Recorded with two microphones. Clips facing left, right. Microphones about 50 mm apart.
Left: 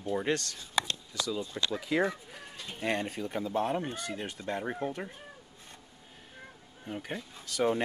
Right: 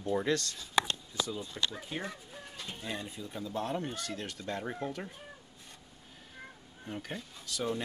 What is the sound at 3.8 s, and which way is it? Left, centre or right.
Speech, centre.